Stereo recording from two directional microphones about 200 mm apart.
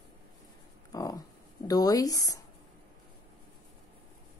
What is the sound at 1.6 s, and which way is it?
Speech, 20° left (ahead or behind).